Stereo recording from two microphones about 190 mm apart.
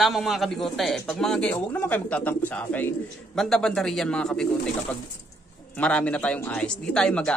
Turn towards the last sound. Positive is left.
turn(degrees=5)  # may be behind; listen again after turning